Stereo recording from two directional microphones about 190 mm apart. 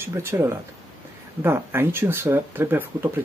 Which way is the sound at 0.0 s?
10° right (ahead or behind).